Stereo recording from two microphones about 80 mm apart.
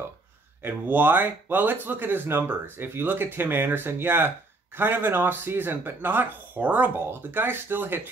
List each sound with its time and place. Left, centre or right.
0.6 s speech: right